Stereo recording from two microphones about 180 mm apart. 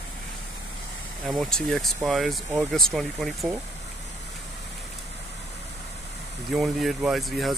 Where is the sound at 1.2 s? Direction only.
Centre (ahead or behind).